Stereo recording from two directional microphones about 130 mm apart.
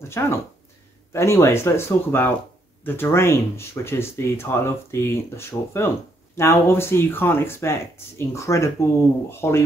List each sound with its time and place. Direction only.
0.2 s speech: 20° left (ahead or behind)